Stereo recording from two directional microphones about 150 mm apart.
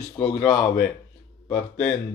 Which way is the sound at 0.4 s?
20° left (ahead or behind).